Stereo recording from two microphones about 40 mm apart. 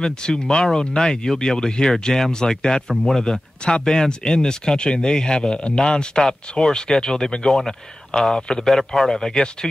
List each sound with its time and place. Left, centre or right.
0.0 s speech: centre
2.9 s speech: centre
3.2 s speech: centre